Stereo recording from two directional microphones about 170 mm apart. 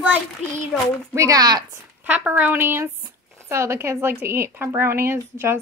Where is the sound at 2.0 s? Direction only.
10° right (ahead or behind).